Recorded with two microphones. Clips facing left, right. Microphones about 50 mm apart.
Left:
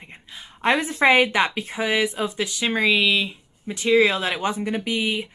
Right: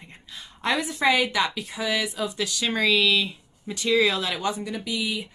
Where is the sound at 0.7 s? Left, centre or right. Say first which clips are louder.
Left 5 dB; left.